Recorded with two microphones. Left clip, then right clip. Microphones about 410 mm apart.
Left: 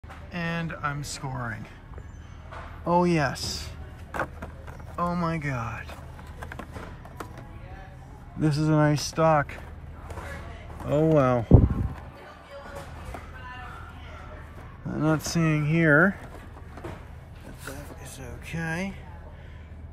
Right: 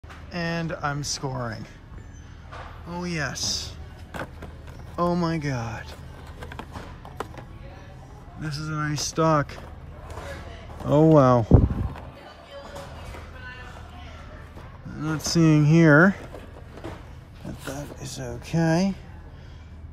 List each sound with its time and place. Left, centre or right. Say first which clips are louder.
0.3 s speech: right 3 dB; centre
2.9 s speech: left 8 dB; centre
8.4 s speech: left 7 dB; centre
11.0 s speech: right 5 dB; left
14.9 s speech: left 3 dB; centre
18.0 s speech: right 6 dB; centre